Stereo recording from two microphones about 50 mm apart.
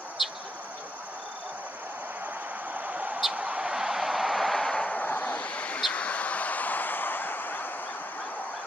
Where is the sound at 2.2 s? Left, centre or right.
Right.